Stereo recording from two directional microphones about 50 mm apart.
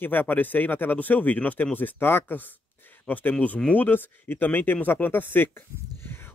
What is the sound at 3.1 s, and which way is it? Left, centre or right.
Speech, left.